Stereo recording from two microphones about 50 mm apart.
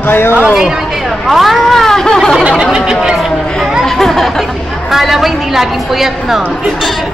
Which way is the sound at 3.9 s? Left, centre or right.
Centre.